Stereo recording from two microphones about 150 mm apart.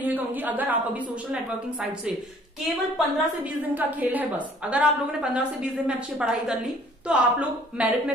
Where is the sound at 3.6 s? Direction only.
10° right (ahead or behind).